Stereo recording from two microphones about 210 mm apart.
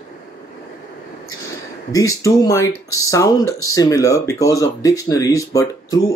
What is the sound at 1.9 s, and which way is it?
Speech, 15° left (ahead or behind).